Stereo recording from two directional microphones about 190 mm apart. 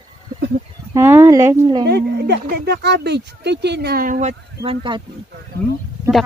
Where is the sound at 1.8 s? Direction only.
60° right (ahead or behind); by 5.0 s 25° right (ahead or behind).